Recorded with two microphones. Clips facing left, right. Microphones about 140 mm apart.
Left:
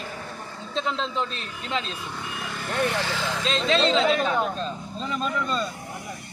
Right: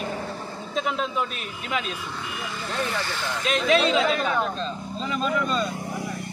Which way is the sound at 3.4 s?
25° left (ahead or behind).